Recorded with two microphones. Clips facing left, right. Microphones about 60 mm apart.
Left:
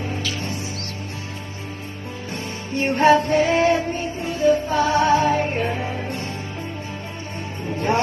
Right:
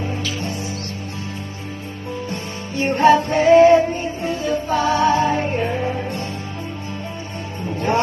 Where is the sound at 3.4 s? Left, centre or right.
Right.